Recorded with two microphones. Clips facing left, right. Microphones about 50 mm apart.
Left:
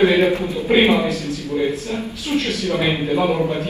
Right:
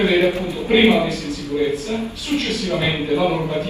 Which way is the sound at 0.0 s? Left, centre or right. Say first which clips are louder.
Left 2 dB; left.